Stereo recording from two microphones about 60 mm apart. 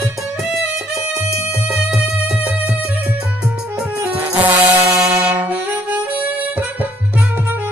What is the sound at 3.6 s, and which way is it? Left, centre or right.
Music, right.